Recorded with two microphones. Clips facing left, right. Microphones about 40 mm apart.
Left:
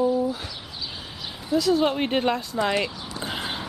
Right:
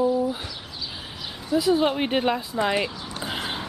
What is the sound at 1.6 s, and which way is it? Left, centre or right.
Speech, centre.